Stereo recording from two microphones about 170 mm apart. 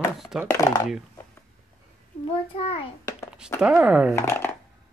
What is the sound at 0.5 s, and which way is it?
Speech, 20° left (ahead or behind).